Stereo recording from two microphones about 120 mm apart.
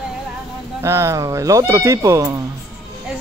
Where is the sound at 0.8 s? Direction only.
25° right (ahead or behind).